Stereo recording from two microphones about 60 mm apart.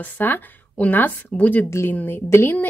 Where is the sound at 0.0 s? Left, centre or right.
Left.